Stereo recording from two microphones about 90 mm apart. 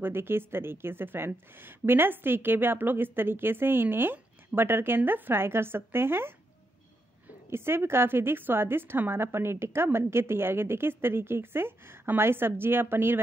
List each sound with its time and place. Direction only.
0.0 s a woman's voice: 25° right (ahead or behind)
7.4 s a woman's voice: 30° right (ahead or behind)